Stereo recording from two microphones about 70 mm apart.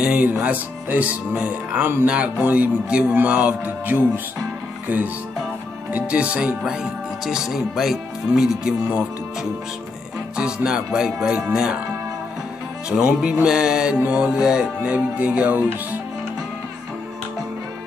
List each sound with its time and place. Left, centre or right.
0.0 s music: centre
0.3 s speech: right; by 8.7 s centre
10.3 s speech: centre
12.9 s speech: centre